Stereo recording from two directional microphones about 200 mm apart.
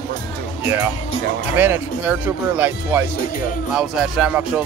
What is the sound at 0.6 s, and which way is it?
A man's voice, 10° right (ahead or behind).